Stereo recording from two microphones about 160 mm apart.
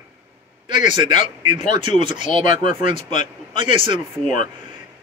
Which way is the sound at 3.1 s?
50° left (ahead or behind).